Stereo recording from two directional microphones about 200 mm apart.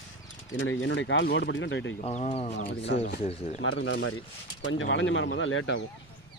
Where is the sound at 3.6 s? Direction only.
70° left (ahead or behind).